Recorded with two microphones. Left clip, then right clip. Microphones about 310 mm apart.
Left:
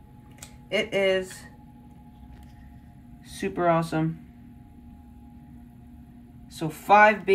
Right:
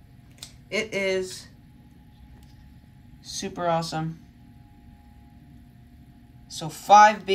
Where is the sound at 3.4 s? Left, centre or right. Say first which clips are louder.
Left 2 dB; centre.